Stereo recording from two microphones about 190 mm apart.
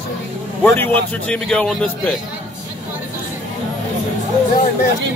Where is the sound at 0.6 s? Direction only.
10° left (ahead or behind).